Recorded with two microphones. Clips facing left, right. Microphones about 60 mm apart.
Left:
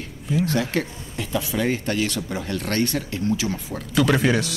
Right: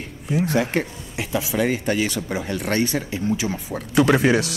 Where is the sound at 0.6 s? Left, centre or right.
Right.